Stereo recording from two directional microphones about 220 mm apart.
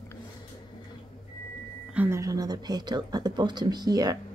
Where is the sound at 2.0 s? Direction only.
10° right (ahead or behind).